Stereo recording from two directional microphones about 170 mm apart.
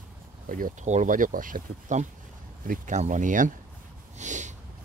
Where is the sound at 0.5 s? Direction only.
55° right (ahead or behind).